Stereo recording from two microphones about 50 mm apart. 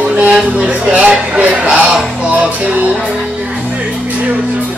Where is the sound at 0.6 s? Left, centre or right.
Right.